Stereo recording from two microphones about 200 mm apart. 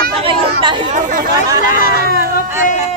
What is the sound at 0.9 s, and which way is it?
Chatter, 40° right (ahead or behind).